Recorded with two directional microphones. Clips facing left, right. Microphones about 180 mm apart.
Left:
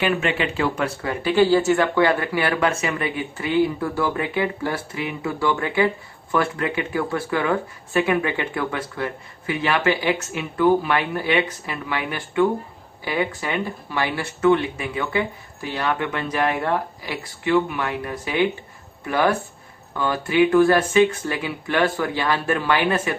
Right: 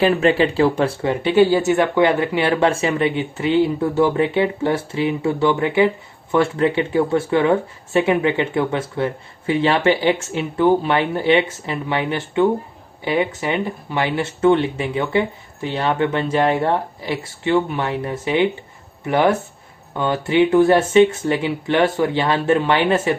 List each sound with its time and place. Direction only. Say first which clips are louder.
0.0 s speech: right 7 dB; 35° right (ahead or behind)